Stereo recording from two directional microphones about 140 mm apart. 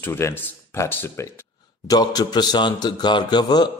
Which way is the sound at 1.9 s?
30° left (ahead or behind).